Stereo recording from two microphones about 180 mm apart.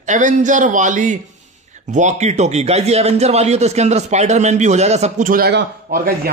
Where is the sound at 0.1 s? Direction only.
45° right (ahead or behind).